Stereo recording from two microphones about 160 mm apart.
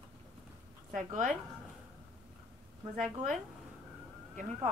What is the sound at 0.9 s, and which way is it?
Speech, 50° right (ahead or behind).